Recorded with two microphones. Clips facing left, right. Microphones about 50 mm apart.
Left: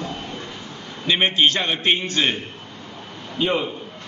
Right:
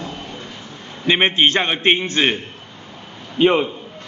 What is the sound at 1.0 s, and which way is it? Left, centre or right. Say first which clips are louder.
A man's voice: right 3 dB; right.